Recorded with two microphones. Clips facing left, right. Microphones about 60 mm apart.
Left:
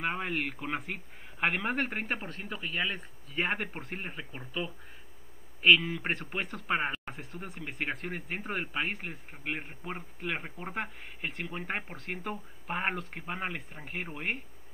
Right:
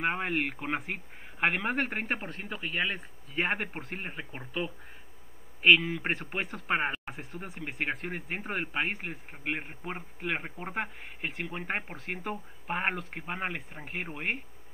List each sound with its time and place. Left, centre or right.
0.0 s a man's voice: centre
1.4 s a man's voice: centre
5.6 s a man's voice: centre